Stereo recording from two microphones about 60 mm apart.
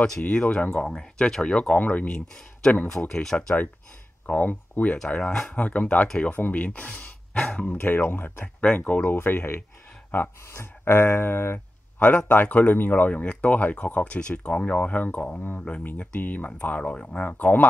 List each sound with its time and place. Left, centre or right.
0.2 s speech: left
0.7 s speech: centre
4.3 s speech: left
5.1 s speech: centre
5.6 s speech: left
7.7 s speech: left